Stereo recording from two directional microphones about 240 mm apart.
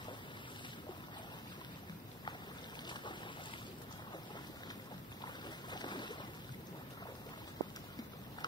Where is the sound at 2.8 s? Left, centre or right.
Centre.